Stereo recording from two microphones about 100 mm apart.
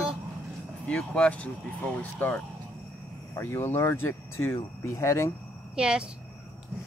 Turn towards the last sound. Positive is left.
turn(degrees=-10)  # may be behind; listen again after turning